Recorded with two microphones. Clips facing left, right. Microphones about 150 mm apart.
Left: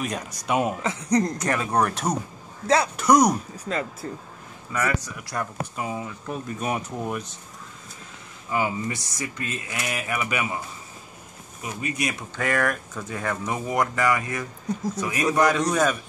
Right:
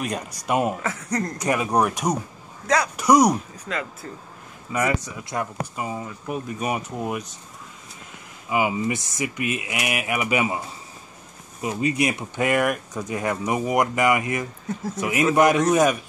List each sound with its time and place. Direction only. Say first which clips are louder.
0.0 s speech: right 1 dB; 5° right (ahead or behind)
0.8 s speech: left 4 dB; 20° left (ahead or behind)
1.4 s speech: right 2 dB; 10° right (ahead or behind)
2.6 s speech: left 1 dB; 25° left (ahead or behind)
3.0 s speech: right 3 dB; 10° right (ahead or behind)
4.0 s speech: left 3 dB; 35° left (ahead or behind)
4.7 s speech: right 3 dB; 20° right (ahead or behind)
5.8 s speech: even; centre (ahead or behind)
6.0 s speech: right 2 dB; 10° right (ahead or behind)
8.5 s speech: right 3 dB; 15° right (ahead or behind)
11.6 s speech: right 6 dB; 25° right (ahead or behind)